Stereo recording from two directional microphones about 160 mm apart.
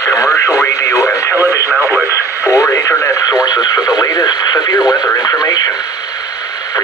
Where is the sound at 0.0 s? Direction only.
20° left (ahead or behind).